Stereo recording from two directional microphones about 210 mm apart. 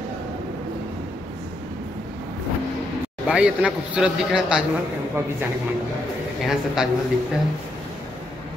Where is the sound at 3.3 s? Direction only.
5° right (ahead or behind).